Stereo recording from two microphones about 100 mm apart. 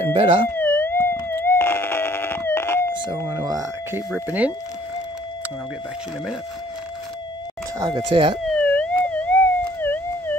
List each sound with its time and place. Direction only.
0.0 s speech: 65° right (ahead or behind)
0.5 s a sound: 20° left (ahead or behind)
3.3 s speech: 40° right (ahead or behind)
4.3 s speech: 15° right (ahead or behind)
8.1 s speech: 60° right (ahead or behind)
8.5 s theremin: 10° left (ahead or behind)